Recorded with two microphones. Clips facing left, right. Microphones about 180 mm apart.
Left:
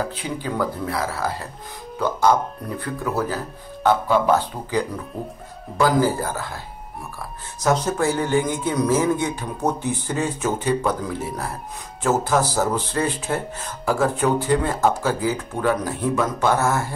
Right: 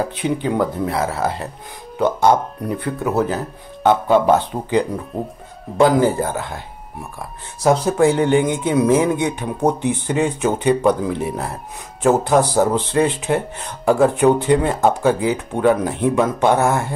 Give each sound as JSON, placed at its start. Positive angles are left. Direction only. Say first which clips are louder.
{"t": 0.1, "sound": "speech", "louder": "right 7 dB", "side_deg": -20}